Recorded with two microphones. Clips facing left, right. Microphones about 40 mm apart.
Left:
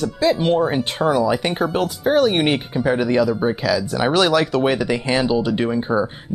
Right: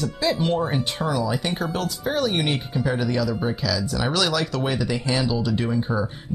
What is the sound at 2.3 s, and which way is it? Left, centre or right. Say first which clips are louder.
Speech: left 5 dB; left.